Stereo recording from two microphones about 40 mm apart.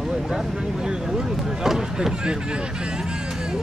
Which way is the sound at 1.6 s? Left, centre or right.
Centre.